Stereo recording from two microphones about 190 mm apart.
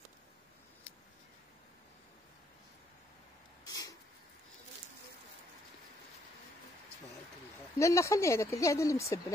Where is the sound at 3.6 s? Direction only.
20° left (ahead or behind).